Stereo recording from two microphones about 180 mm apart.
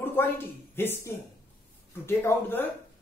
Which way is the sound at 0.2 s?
10° left (ahead or behind).